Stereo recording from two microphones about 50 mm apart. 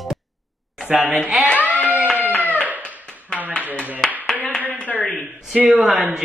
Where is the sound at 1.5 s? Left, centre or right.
Left.